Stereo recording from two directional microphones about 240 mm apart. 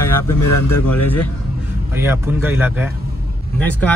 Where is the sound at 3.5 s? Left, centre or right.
Centre.